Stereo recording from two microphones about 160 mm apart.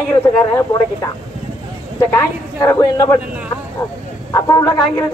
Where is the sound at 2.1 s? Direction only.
20° left (ahead or behind).